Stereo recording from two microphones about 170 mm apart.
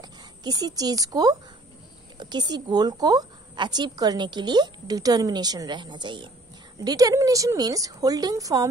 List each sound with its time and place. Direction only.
0.0 s a woman's voice: 25° right (ahead or behind)